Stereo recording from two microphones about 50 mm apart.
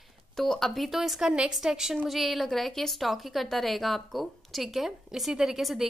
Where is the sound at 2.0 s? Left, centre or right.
Centre.